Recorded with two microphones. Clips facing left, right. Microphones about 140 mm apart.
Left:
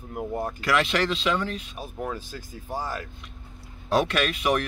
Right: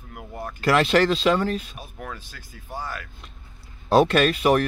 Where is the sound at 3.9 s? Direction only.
35° right (ahead or behind).